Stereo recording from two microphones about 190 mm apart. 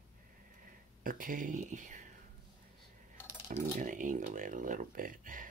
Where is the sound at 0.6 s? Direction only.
45° right (ahead or behind).